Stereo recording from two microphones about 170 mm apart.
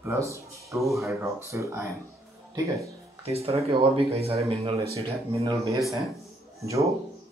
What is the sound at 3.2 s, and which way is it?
Speech, 35° right (ahead or behind).